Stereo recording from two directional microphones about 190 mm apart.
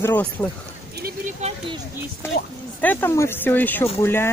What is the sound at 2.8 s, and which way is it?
Speech, 10° left (ahead or behind).